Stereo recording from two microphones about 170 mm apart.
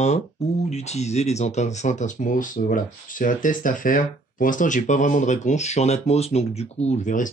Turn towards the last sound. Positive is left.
turn(degrees=50)  # may be behind; listen again after turning